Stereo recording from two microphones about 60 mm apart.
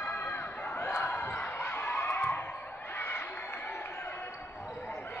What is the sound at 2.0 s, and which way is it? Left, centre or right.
Music, left.